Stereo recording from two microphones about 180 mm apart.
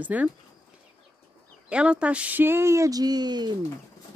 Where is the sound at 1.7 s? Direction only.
5° right (ahead or behind).